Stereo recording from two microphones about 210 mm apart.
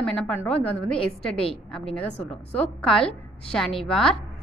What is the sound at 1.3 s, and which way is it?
Speech, 25° left (ahead or behind).